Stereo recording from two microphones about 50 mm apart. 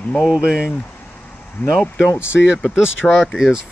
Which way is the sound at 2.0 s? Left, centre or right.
Left.